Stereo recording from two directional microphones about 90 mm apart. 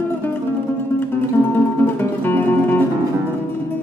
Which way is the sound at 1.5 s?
20° left (ahead or behind).